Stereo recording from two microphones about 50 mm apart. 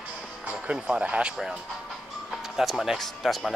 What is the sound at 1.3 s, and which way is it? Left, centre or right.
Speech, centre.